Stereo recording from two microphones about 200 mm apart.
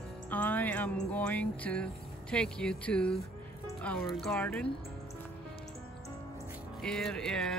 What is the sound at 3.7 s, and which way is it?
Speech, 5° left (ahead or behind).